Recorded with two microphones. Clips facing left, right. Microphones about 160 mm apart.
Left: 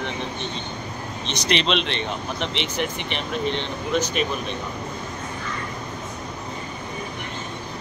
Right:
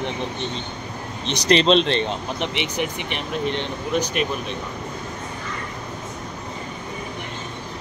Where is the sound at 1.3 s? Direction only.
35° right (ahead or behind).